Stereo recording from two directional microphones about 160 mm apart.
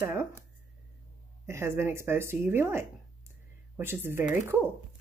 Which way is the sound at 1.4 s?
15° right (ahead or behind).